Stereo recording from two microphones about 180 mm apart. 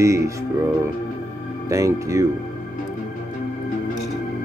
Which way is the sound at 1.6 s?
15° right (ahead or behind).